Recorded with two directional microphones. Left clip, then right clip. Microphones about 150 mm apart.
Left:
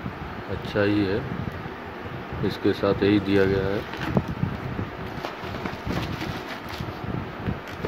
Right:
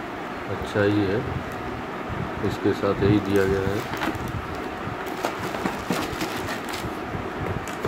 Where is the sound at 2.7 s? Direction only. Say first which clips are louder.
Left 1 dB; 40° left (ahead or behind).